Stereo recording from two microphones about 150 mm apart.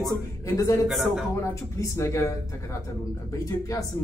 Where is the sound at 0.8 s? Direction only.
Centre (ahead or behind).